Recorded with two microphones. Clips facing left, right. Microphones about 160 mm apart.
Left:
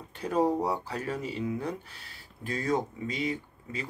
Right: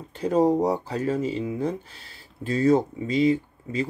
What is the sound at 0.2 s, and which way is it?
Speech, 30° right (ahead or behind).